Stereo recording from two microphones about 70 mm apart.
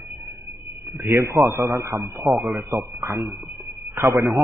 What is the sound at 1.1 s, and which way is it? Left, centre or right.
Speech, right.